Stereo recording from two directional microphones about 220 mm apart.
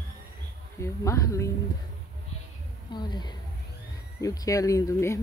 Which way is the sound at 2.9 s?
20° left (ahead or behind).